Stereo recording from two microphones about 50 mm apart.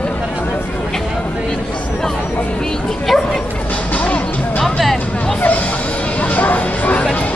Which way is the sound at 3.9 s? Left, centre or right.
Left.